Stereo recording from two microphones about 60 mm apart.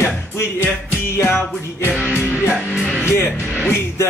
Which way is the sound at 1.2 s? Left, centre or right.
Left.